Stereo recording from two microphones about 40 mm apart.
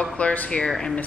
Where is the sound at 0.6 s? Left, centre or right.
Centre.